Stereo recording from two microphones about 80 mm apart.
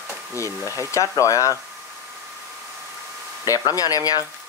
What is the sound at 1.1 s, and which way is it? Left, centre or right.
Speech, left.